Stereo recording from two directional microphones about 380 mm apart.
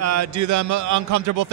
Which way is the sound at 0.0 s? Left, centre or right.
Right.